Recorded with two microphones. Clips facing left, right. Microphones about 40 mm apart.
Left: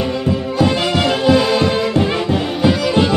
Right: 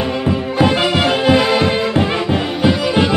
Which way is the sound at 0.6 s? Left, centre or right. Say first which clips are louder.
Right 2 dB; centre.